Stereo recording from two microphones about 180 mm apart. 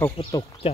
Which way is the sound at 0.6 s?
35° left (ahead or behind).